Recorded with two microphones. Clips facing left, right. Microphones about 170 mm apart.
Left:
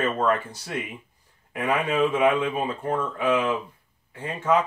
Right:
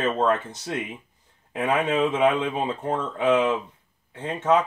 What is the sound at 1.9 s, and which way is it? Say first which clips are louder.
Speech: left 2 dB; 25° right (ahead or behind).